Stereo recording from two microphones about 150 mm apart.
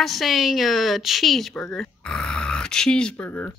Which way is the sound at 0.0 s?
Centre (ahead or behind).